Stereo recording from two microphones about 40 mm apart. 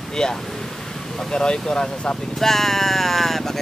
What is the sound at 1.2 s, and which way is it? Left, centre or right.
Speech, left.